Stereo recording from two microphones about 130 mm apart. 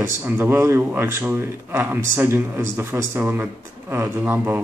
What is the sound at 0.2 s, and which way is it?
A man's voice, 15° right (ahead or behind).